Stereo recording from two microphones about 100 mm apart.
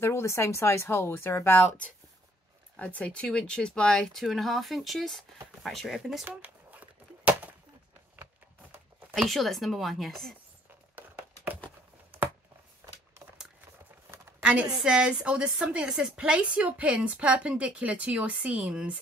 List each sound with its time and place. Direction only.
0.0 s speech: 25° left (ahead or behind)
2.8 s speech: 10° left (ahead or behind)
6.2 s a sound: 15° right (ahead or behind)
9.1 s speech: centre (ahead or behind)
14.4 s a woman's voice: 10° right (ahead or behind)